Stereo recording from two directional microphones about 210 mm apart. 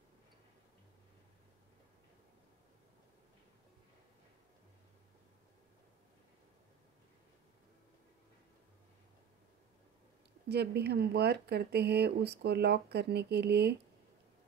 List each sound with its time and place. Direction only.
10.5 s speech: 50° right (ahead or behind)